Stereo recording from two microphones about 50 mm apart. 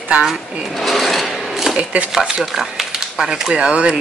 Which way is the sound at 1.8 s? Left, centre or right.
Right.